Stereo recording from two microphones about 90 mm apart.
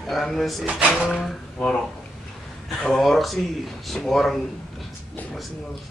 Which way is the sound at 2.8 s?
5° left (ahead or behind).